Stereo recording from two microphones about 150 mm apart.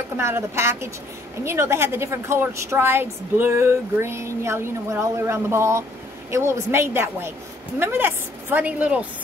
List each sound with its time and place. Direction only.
0.2 s a woman's voice: 15° right (ahead or behind)